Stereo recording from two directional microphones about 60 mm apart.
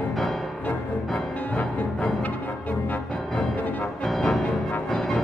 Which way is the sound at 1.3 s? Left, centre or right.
Left.